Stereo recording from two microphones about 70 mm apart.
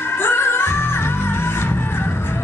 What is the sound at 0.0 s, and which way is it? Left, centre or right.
Music, left.